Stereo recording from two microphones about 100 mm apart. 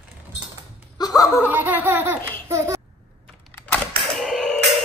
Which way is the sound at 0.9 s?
40° left (ahead or behind).